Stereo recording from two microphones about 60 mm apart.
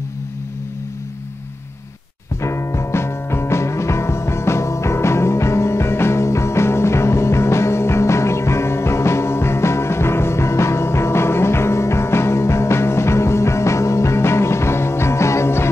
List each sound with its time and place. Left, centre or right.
2.4 s music: left